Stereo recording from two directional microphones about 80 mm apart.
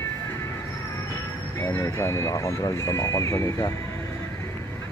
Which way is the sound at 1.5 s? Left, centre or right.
Left.